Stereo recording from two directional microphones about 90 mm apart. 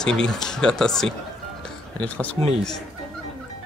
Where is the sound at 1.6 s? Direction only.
15° left (ahead or behind).